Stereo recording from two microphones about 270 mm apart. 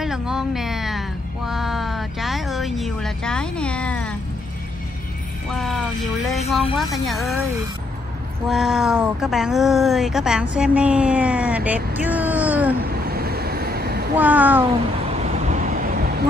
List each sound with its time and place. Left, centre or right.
0.0 s a sound: centre
5.5 s speech: centre
8.5 s speech: centre
12.8 s vehicle: right
14.1 s speech: centre
15.1 s vehicle: right